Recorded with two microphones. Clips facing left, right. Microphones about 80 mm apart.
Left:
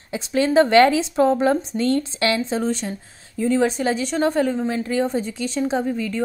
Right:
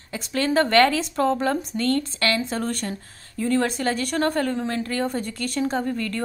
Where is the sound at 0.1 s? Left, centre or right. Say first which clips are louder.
Left 4 dB; centre.